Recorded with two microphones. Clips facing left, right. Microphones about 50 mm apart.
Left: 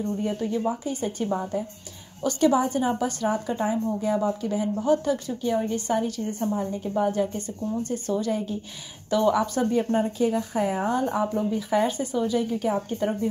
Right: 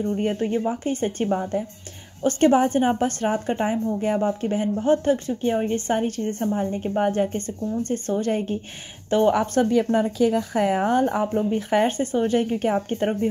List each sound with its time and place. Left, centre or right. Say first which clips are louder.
0.1 s a woman's voice: right 4 dB; right
9.7 s speech: right 3 dB; right